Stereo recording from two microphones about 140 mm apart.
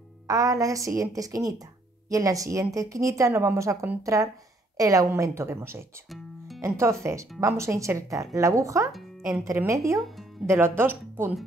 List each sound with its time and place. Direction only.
0.3 s speech: 25° right (ahead or behind)